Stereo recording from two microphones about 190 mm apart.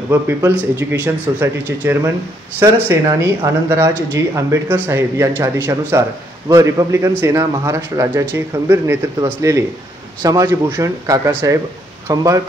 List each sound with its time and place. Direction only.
0.1 s a man's voice: 15° right (ahead or behind)